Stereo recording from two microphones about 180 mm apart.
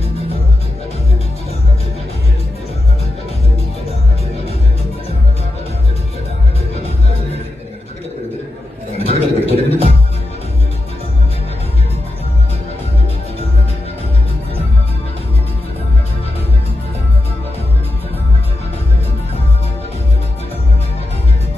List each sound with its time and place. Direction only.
8.9 s music: 35° left (ahead or behind)